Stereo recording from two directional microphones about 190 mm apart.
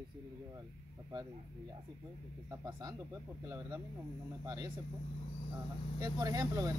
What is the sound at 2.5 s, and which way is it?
Speech, 15° right (ahead or behind).